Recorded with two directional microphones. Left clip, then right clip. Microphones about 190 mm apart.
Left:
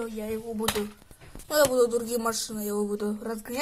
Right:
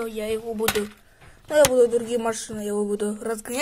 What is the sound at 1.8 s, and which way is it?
Speech, 15° right (ahead or behind).